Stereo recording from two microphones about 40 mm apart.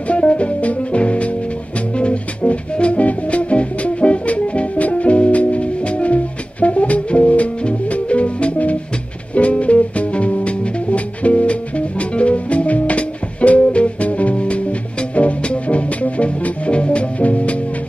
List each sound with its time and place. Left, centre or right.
0.1 s music: left